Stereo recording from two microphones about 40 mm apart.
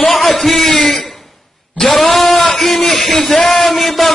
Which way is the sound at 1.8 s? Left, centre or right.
Left.